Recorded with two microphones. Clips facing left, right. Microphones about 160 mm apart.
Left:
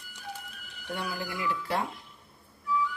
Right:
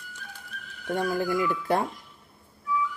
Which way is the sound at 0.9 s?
45° right (ahead or behind).